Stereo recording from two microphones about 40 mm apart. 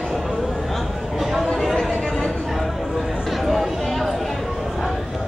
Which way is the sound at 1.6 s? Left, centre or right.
Centre.